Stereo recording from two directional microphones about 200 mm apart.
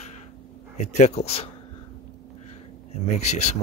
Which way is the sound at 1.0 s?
30° left (ahead or behind).